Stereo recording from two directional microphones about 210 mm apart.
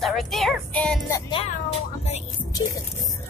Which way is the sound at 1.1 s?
25° left (ahead or behind).